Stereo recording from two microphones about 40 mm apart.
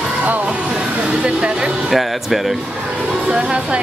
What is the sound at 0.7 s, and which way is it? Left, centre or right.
Speech, right.